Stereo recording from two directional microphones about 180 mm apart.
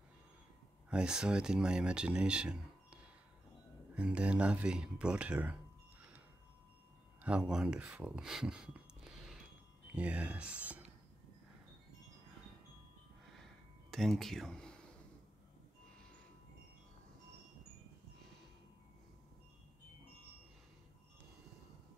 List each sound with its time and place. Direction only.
0.8 s speech: 5° right (ahead or behind)
7.2 s speech: 5° right (ahead or behind)
13.4 s a sound: centre (ahead or behind)